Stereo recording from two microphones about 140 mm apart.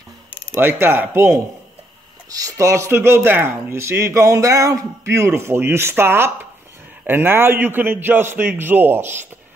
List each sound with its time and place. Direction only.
0.6 s a man's voice: 15° right (ahead or behind)